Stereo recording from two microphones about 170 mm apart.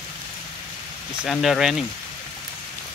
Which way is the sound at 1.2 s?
Centre (ahead or behind).